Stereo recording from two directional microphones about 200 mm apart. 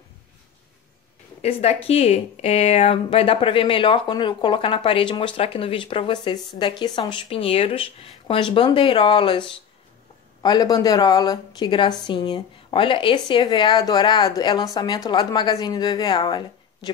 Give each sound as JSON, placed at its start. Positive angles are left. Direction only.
{"t": 1.4, "sound": "speech", "side_deg": 30}
{"t": 10.4, "sound": "speech", "side_deg": 20}